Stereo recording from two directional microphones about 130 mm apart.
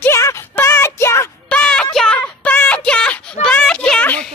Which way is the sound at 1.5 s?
10° left (ahead or behind).